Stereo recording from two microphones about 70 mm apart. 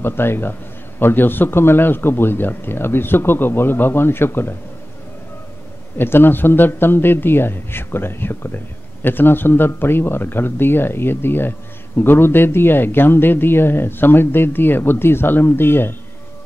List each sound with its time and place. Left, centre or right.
0.0 s a man's voice: left
5.9 s a man's voice: left